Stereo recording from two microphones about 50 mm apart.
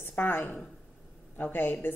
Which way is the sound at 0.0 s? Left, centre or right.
Left.